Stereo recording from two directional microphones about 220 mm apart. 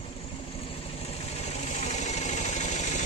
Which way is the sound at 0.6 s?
25° left (ahead or behind).